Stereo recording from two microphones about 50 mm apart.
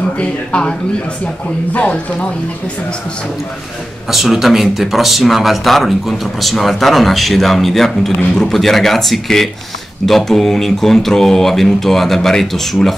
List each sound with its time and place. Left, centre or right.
0.2 s speech: left
4.1 s speech: centre